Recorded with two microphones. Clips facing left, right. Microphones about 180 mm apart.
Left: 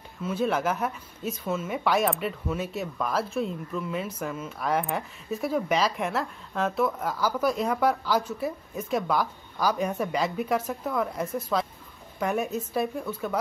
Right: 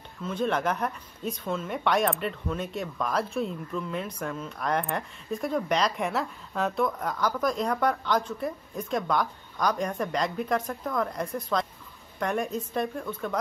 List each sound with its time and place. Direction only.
0.2 s speech: 5° left (ahead or behind)